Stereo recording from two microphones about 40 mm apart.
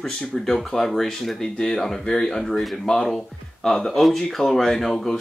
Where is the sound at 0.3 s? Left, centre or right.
Centre.